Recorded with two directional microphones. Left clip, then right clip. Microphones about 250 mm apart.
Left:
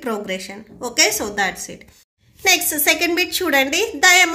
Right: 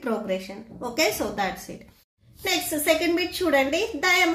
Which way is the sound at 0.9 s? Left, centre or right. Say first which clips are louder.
Left 6 dB; left.